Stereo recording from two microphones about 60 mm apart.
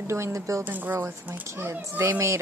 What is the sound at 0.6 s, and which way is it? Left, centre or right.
Speech, right.